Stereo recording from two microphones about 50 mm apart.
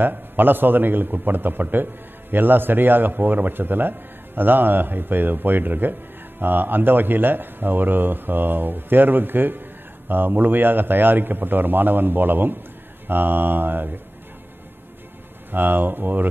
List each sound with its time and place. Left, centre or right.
0.0 s a man's voice: right
15.5 s a man's voice: right